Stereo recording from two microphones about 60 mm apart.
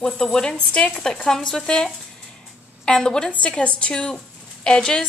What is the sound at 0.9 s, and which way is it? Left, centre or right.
A woman's voice, centre.